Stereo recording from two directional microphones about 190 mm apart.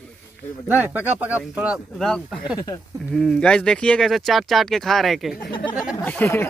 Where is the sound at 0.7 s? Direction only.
10° right (ahead or behind).